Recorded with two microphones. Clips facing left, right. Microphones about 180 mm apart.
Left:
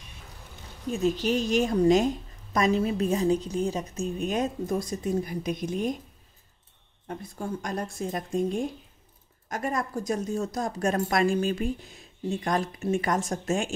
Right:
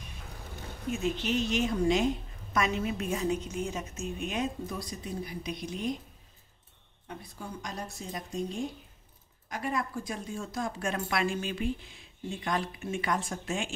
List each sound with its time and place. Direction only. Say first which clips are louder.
0.8 s a woman's voice: left 5 dB; 35° left (ahead or behind)
7.1 s a woman's voice: left 8 dB; 50° left (ahead or behind)